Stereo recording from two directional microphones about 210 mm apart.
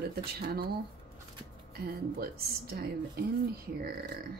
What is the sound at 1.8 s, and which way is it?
Speech, 45° right (ahead or behind).